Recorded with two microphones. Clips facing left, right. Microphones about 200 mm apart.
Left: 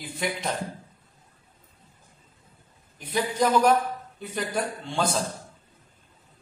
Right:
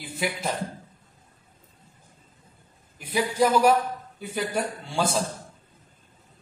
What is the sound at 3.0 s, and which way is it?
A man's voice, 10° right (ahead or behind).